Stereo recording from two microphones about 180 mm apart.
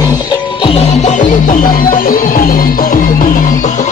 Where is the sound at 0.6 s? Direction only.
35° left (ahead or behind).